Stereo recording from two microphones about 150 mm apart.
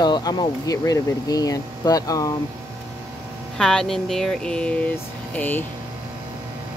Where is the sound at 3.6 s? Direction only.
5° left (ahead or behind).